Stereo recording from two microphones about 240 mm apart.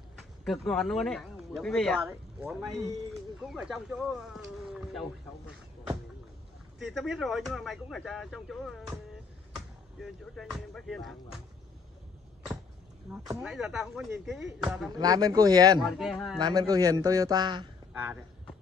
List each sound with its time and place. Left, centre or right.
0.5 s speech: centre
2.0 s speech: centre
6.9 s speech: centre
9.9 s speech: centre
13.1 s a man's voice: centre
15.0 s a man's voice: centre
15.8 s speech: centre
16.3 s a man's voice: centre
17.9 s a man's voice: centre